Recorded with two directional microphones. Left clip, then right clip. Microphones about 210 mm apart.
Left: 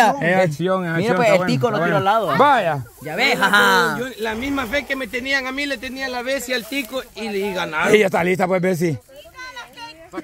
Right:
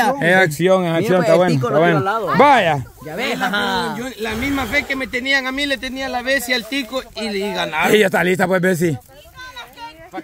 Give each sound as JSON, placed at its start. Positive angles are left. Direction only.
{"t": 0.2, "sound": "speech", "side_deg": -15}
{"t": 1.0, "sound": "speech", "side_deg": 30}
{"t": 2.3, "sound": "speech", "side_deg": -30}
{"t": 3.1, "sound": "speech", "side_deg": 45}
{"t": 4.0, "sound": "speech", "side_deg": -25}
{"t": 7.2, "sound": "speech", "side_deg": -20}